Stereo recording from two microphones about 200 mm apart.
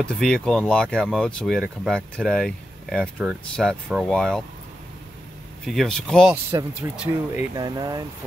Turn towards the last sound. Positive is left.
turn(degrees=-20)  # may be behind; listen again after turning